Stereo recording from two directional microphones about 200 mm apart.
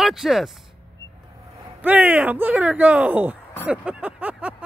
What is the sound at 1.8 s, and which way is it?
Speech, 5° right (ahead or behind).